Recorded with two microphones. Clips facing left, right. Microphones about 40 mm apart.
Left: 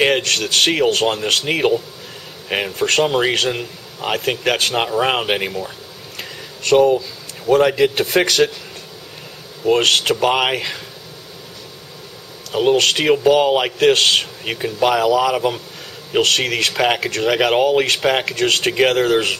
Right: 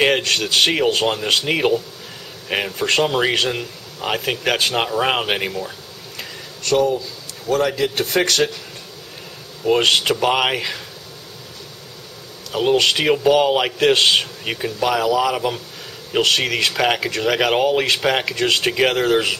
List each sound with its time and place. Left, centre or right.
0.0 s speech: centre
6.1 s a sound: centre
7.4 s a man's voice: left
9.7 s speech: centre
12.5 s a man's voice: centre